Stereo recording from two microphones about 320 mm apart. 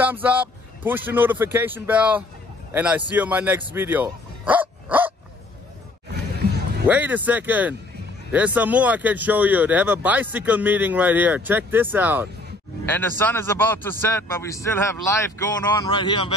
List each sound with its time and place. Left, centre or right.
0.0 s speech: centre
3.6 s dog: centre
6.4 s music: right
6.9 s speech: centre
12.8 s a man's voice: centre